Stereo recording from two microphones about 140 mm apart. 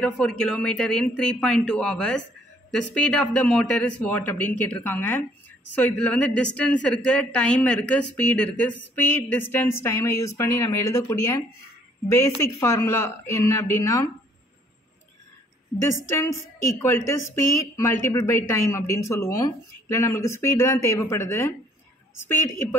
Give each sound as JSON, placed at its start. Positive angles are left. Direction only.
{"t": 0.0, "sound": "a woman's voice", "side_deg": 5}
{"t": 16.7, "sound": "speech", "side_deg": 15}